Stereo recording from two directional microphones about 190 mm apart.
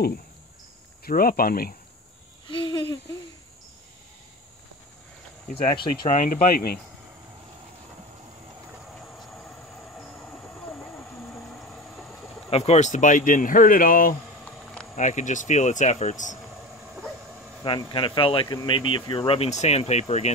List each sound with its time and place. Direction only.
1.0 s speech: 50° left (ahead or behind)
2.4 s a sound: 25° left (ahead or behind)
5.5 s speech: 30° left (ahead or behind); by 6.8 s 55° left (ahead or behind)
8.9 s vehicle: 5° left (ahead or behind)
12.4 s speech: 35° left (ahead or behind)
14.4 s a sound: 5° left (ahead or behind)
15.0 s speech: 40° left (ahead or behind)
17.6 s speech: 25° left (ahead or behind)